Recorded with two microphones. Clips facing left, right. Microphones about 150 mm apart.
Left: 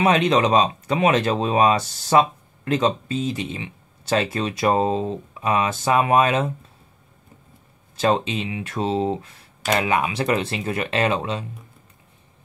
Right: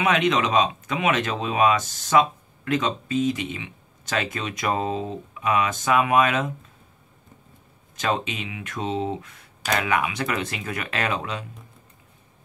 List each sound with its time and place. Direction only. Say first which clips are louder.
0.0 s speech: left 4 dB; 35° left (ahead or behind)
7.9 s speech: left 5 dB; 30° left (ahead or behind)